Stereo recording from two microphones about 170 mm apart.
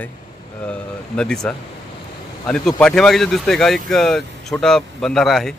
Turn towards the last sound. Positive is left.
turn(degrees=0)  # may be behind; listen again after turning